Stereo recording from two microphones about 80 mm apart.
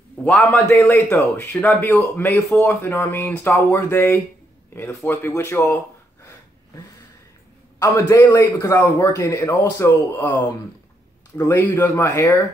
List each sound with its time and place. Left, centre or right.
0.2 s a man's voice: centre
0.5 s speech: centre
0.9 s a man's voice: left
1.6 s a man's voice: left
7.8 s a man's voice: left
11.5 s speech: left
11.9 s a man's voice: left